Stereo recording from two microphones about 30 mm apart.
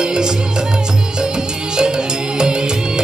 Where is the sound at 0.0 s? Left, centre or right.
Right.